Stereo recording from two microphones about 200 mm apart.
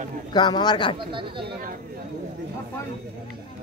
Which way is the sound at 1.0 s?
25° right (ahead or behind).